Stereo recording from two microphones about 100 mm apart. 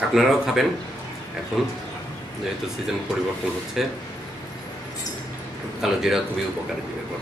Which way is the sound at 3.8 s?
5° right (ahead or behind).